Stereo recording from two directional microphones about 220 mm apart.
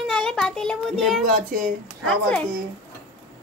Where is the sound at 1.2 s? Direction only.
35° right (ahead or behind).